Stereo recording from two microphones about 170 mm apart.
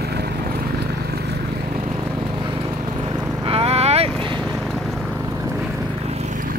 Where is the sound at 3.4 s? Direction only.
35° right (ahead or behind).